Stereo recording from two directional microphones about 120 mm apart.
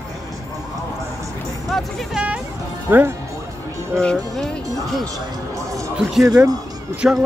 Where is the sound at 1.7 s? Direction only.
10° right (ahead or behind).